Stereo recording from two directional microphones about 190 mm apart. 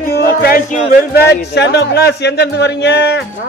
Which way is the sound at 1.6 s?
65° left (ahead or behind).